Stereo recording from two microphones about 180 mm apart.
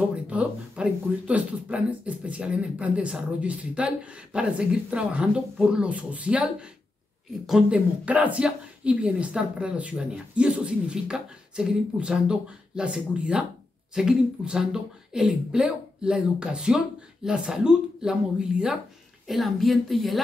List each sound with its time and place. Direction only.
0.1 s a woman's voice: 5° right (ahead or behind)